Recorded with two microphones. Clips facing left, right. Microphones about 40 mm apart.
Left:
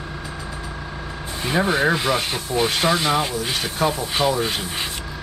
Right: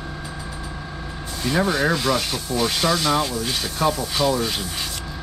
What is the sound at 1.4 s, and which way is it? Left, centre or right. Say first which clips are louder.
Speech: left 1 dB; left.